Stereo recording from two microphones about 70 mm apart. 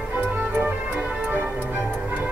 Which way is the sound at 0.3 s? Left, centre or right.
Right.